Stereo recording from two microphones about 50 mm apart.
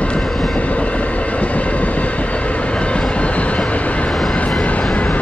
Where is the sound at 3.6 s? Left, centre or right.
Left.